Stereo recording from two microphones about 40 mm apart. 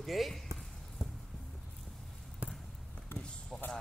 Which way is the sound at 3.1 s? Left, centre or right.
Left.